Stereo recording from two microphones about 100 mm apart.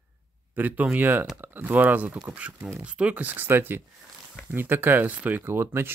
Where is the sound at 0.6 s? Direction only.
20° right (ahead or behind).